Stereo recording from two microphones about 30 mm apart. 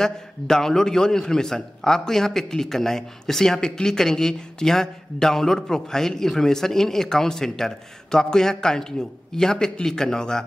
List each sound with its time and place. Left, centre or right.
0.0 s a man's voice: centre